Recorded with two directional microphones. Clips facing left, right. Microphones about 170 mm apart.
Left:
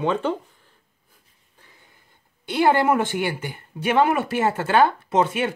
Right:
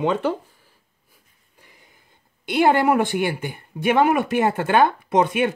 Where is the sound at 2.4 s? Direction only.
15° right (ahead or behind).